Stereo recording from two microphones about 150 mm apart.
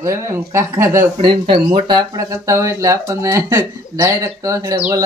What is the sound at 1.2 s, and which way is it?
Speech, 35° right (ahead or behind).